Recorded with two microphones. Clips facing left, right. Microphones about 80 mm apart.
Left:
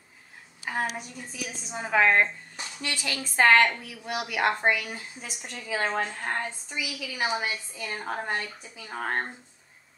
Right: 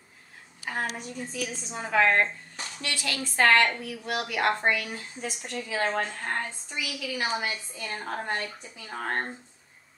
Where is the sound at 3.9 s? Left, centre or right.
Centre.